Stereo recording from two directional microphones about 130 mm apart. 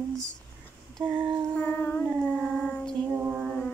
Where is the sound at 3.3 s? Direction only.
5° left (ahead or behind).